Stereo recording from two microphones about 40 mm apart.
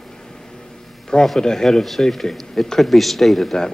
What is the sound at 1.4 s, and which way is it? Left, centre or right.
Speech, centre.